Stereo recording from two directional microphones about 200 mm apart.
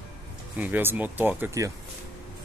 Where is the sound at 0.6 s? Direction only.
10° right (ahead or behind).